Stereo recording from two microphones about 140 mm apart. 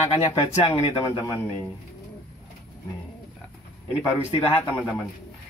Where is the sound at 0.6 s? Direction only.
45° left (ahead or behind).